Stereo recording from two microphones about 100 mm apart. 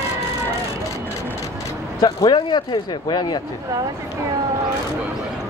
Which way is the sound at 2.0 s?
45° left (ahead or behind).